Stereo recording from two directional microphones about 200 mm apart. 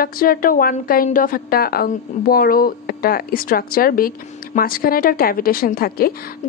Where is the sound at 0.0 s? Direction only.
45° left (ahead or behind).